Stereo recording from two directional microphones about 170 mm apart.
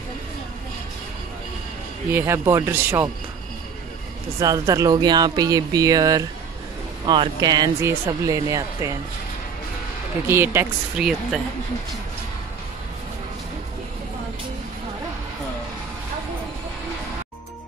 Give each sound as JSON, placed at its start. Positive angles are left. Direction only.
{"t": 2.0, "sound": "speech", "side_deg": -15}
{"t": 4.4, "sound": "speech", "side_deg": -20}
{"t": 10.2, "sound": "speech", "side_deg": -15}